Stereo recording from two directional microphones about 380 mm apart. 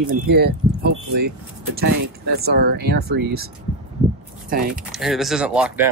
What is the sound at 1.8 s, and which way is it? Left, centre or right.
Speech, right.